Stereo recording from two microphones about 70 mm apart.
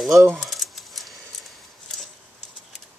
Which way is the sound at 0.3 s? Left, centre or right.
Centre.